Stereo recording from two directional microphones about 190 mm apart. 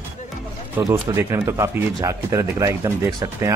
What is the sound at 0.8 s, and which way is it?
Speech, 15° right (ahead or behind).